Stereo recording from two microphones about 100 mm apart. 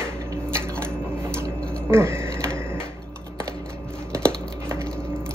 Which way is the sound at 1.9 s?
25° right (ahead or behind).